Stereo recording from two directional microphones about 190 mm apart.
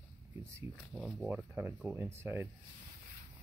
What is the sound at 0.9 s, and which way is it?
Speech, 5° right (ahead or behind).